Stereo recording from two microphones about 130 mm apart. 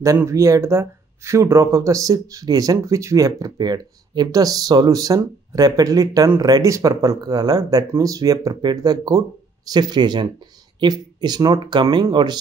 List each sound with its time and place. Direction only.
0.0 s speech: 25° right (ahead or behind)